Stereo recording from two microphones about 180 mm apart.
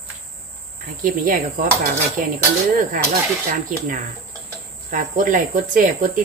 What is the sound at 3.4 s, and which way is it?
Speech, 50° right (ahead or behind).